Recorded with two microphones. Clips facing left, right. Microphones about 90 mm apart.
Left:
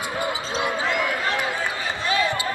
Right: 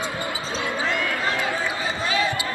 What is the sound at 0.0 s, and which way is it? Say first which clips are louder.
Basketball bounce: left 2 dB; 20° left (ahead or behind).